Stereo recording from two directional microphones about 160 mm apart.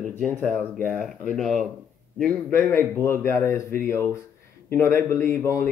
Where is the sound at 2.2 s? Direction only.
10° left (ahead or behind).